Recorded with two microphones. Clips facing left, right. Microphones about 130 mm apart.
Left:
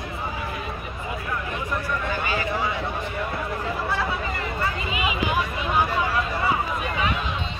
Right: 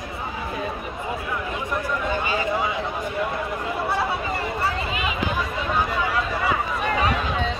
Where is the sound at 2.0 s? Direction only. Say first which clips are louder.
Right 3 dB; 25° right (ahead or behind).